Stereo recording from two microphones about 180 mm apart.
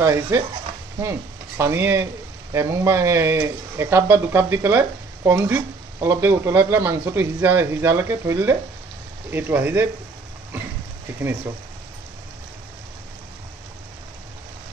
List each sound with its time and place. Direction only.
0.0 s speech: 15° right (ahead or behind)
1.6 s speech: 15° right (ahead or behind)